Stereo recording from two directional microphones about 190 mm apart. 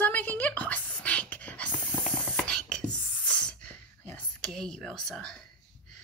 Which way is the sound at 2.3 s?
5° left (ahead or behind).